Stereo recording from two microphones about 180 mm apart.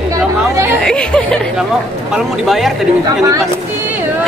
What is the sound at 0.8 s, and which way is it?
A woman's voice, 5° left (ahead or behind).